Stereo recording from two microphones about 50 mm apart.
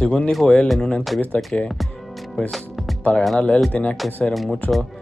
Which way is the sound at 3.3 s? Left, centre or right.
Left.